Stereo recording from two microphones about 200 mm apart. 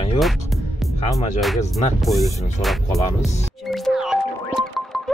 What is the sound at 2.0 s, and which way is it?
Speech, centre (ahead or behind).